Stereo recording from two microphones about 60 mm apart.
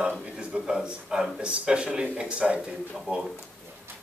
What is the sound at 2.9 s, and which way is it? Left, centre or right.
Speech, centre.